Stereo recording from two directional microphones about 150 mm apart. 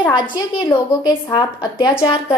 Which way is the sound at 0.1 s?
30° left (ahead or behind).